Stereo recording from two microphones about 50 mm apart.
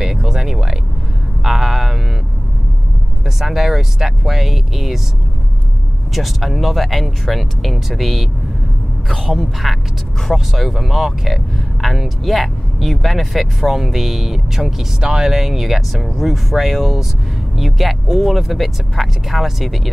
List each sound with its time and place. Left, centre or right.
0.0 s a sound: centre
3.3 s speech: centre
6.1 s speech: centre